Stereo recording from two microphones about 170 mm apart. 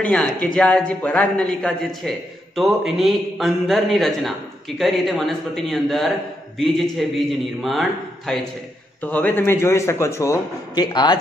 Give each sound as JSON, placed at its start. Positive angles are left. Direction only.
{"t": 0.0, "sound": "a man's voice", "side_deg": 10}